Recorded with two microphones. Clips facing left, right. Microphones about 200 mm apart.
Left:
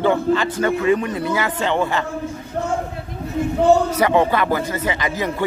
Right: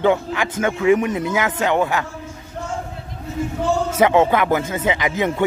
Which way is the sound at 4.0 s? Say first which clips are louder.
Right 2 dB; 20° right (ahead or behind).